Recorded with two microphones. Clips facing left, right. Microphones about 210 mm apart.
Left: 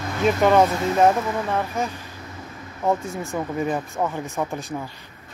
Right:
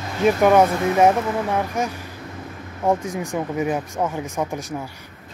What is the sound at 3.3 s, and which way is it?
Speech, 10° right (ahead or behind).